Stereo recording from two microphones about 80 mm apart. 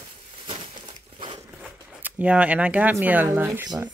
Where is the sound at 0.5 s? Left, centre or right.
Right.